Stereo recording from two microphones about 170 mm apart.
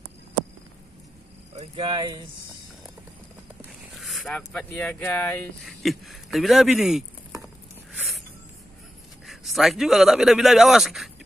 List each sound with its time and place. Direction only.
1.5 s speech: 35° right (ahead or behind)
3.9 s speech: centre (ahead or behind)
7.4 s a sound: centre (ahead or behind)
9.2 s a man's voice: centre (ahead or behind)